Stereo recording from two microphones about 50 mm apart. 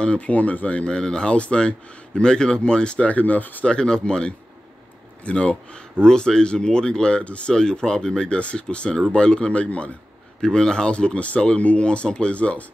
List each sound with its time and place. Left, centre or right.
0.0 s speech: left
3.6 s speech: centre
10.4 s speech: centre